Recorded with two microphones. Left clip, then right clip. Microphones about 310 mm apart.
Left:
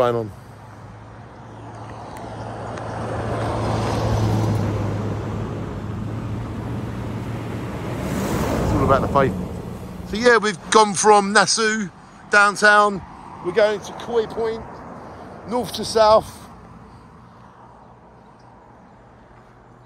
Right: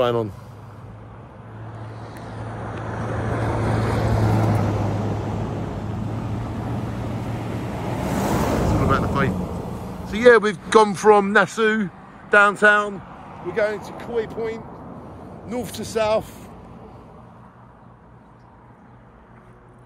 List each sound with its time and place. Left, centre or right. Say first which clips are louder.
0.0 s speech: left 1 dB; centre
2.0 s vehicle: left 3 dB; left
4.2 s vehicle: right 2 dB; centre
13.5 s speech: left 5 dB; left